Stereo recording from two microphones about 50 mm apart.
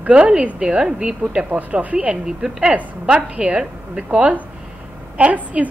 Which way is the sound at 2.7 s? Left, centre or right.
Right.